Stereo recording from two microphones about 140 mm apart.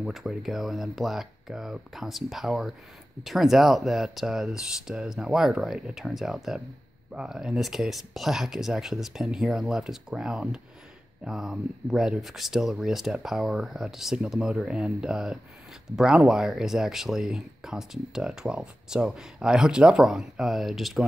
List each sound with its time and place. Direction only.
0.0 s speech: 5° right (ahead or behind)